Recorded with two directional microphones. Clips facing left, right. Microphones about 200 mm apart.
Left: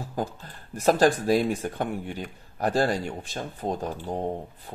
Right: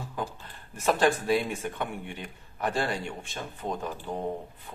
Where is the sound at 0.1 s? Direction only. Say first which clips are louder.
Left 7 dB; 40° left (ahead or behind).